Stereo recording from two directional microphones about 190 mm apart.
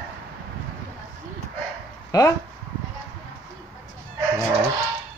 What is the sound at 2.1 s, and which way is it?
Speech, 20° left (ahead or behind).